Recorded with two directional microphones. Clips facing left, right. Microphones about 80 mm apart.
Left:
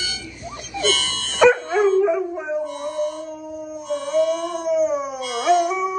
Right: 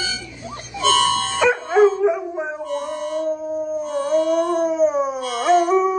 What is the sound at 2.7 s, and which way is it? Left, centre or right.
Child singing, right.